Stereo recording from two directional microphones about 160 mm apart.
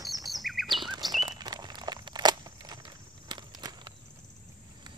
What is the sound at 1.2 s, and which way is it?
Crunch, 25° right (ahead or behind).